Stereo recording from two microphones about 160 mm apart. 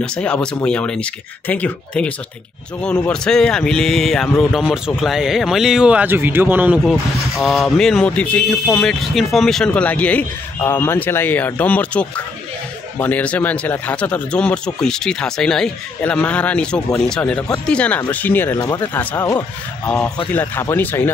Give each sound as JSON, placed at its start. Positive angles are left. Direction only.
{"t": 0.0, "sound": "speech", "side_deg": 5}
{"t": 6.8, "sound": "speech", "side_deg": 0}
{"t": 18.6, "sound": "speech", "side_deg": 25}
{"t": 18.9, "sound": "speech", "side_deg": 15}